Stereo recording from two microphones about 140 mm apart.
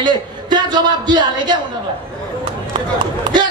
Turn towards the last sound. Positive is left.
turn(degrees=-30)  # may be behind; listen again after turning